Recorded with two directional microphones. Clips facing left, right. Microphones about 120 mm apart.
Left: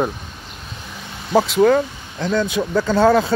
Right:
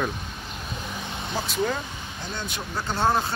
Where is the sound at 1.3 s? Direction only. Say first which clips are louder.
Left 14 dB; 90° left; by 2.3 s 70° left (ahead or behind).